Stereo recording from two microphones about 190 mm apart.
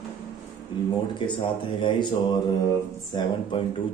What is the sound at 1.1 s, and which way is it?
A man's voice, 25° left (ahead or behind).